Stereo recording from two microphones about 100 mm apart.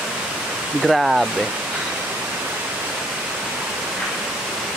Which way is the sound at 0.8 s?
Centre (ahead or behind).